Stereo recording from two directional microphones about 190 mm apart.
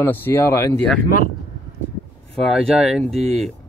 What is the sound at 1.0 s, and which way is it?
Speech, 50° left (ahead or behind).